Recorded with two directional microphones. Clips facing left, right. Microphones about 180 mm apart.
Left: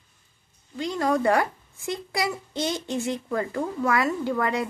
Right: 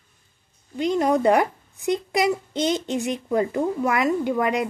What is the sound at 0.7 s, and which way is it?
A child's voice, 20° right (ahead or behind).